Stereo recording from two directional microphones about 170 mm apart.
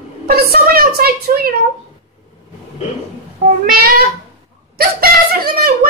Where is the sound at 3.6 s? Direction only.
60° right (ahead or behind).